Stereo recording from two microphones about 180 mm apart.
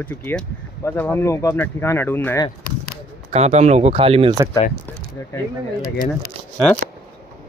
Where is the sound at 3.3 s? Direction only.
35° right (ahead or behind).